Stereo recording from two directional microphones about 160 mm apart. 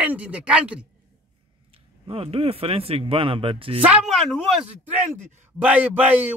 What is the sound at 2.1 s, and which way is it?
Speech, 35° right (ahead or behind).